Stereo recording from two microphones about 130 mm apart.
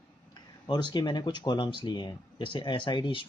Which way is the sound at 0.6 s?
35° left (ahead or behind).